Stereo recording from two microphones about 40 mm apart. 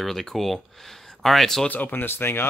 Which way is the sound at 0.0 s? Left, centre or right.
Centre.